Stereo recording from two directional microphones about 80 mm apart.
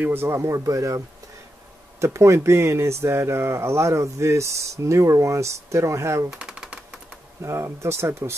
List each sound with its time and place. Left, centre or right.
0.0 s speech: right
0.5 s speech: right
6.3 s typing: centre
7.4 s speech: right